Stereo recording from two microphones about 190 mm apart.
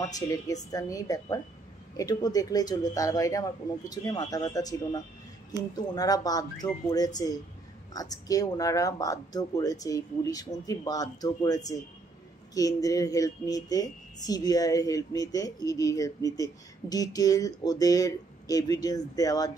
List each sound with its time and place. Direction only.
0.1 s speech: 20° left (ahead or behind)